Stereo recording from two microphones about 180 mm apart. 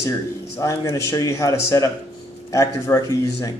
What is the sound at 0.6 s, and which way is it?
A man's voice, 15° left (ahead or behind).